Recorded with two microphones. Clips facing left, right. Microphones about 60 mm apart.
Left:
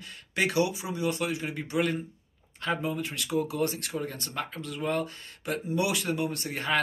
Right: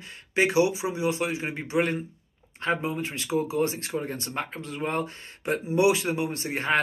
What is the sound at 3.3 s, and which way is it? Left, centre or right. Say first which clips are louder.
Speech: right 3 dB; centre.